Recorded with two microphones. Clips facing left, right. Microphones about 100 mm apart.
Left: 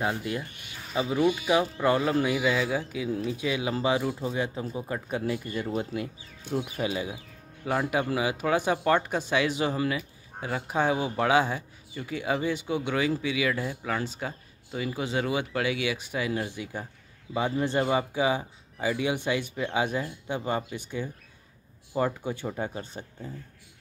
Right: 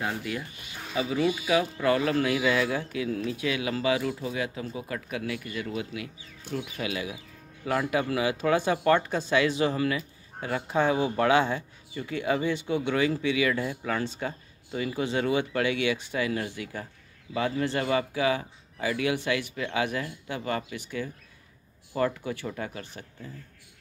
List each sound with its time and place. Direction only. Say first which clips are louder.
0.9 s speech: left 2 dB; 25° left (ahead or behind)
6.8 s speech: left 2 dB; 30° left (ahead or behind)